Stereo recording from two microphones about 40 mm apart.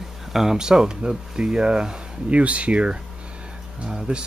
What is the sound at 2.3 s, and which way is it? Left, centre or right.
Speech, right.